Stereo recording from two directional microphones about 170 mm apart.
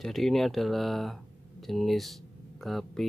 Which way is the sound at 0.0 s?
Centre (ahead or behind).